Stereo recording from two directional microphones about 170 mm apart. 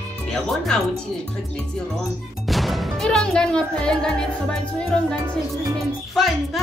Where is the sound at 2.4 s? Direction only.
Centre (ahead or behind).